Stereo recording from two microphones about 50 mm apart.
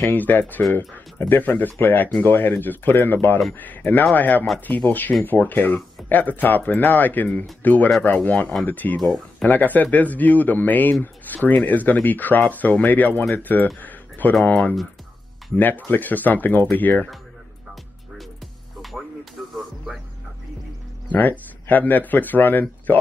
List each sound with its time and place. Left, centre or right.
0.1 s speech: left
13.7 s a sound: left
14.5 s speech: left
15.5 s speech: left
18.8 s music: centre
21.1 s speech: left